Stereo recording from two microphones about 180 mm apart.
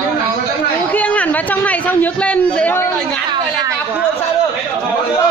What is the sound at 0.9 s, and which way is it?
A man's voice, 10° left (ahead or behind).